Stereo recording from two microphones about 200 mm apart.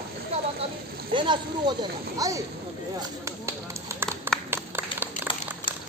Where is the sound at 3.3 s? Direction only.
15° right (ahead or behind).